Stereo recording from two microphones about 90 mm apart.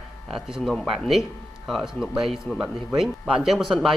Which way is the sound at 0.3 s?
Centre (ahead or behind).